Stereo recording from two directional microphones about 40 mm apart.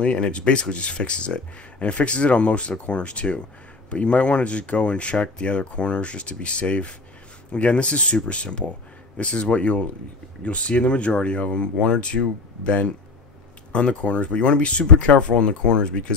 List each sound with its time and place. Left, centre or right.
0.0 s speech: left